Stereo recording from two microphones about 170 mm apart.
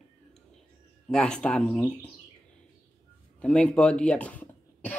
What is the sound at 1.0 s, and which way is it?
Speech, 5° left (ahead or behind).